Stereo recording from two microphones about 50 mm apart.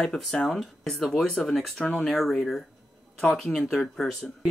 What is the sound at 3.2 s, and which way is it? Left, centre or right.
Speech, centre.